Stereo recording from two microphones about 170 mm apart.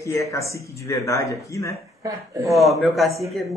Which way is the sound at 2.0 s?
20° right (ahead or behind).